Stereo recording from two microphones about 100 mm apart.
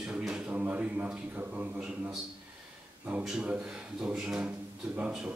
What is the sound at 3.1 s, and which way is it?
A man's voice, 10° right (ahead or behind).